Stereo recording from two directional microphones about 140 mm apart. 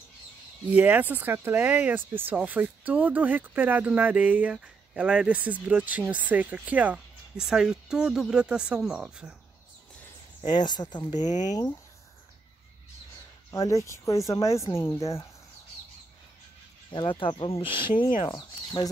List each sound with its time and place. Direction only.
0.7 s speech: 10° right (ahead or behind)
10.5 s speech: 30° left (ahead or behind)
11.1 s speech: 60° left (ahead or behind)
13.5 s speech: 20° left (ahead or behind)
16.9 s speech: 35° left (ahead or behind)